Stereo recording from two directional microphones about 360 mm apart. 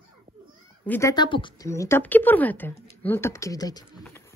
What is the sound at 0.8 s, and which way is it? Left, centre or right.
Speech, centre.